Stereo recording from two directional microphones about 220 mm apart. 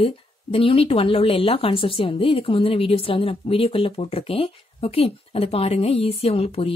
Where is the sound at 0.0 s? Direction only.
25° left (ahead or behind).